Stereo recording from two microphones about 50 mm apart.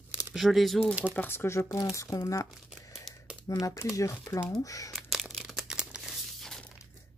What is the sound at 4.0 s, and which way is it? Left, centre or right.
Speech, left.